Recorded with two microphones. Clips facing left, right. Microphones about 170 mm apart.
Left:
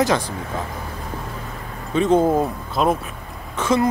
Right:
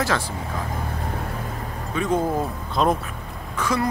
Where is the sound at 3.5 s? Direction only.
25° left (ahead or behind).